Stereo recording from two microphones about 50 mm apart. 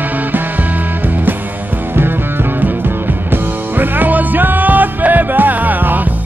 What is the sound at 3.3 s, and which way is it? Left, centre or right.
Music, right.